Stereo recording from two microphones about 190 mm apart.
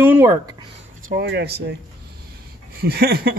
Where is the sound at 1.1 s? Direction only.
60° right (ahead or behind).